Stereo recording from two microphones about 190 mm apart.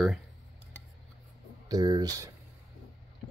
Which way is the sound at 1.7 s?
20° right (ahead or behind).